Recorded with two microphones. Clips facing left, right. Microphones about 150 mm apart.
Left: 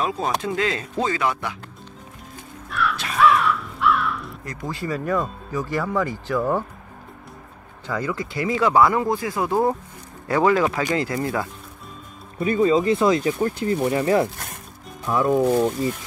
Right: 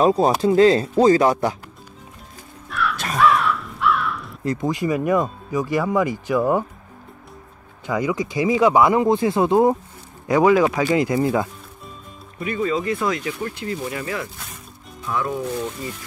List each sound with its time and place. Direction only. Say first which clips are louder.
0.0 s speech: right 8 dB; 35° right (ahead or behind)
2.7 s crow: right 1 dB; centre (ahead or behind)
4.5 s speech: right 7 dB; 20° right (ahead or behind)
7.8 s speech: right 4 dB; 15° right (ahead or behind)
12.4 s speech: left 5 dB; 30° left (ahead or behind)
14.3 s music: left 2 dB; 60° left (ahead or behind)
15.0 s speech: left 4 dB; 30° left (ahead or behind)
15.3 s speech: left 8 dB; 45° left (ahead or behind)